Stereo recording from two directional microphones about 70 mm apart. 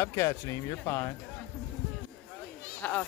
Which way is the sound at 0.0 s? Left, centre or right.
Left.